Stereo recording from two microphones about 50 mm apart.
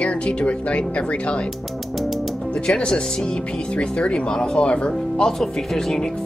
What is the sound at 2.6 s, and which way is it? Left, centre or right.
Speech, centre.